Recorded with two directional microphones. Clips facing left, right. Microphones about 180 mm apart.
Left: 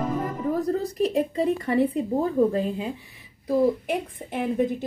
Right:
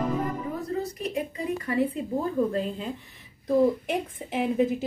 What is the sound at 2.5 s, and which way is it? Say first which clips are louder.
Speech: left 3 dB; 15° left (ahead or behind).